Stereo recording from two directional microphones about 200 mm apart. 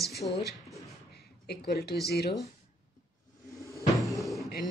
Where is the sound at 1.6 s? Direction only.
55° left (ahead or behind).